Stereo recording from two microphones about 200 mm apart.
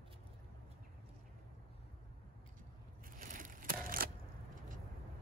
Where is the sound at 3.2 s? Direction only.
45° right (ahead or behind).